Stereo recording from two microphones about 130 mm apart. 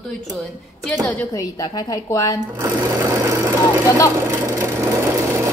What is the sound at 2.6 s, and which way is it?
Sewing machine, 25° right (ahead or behind).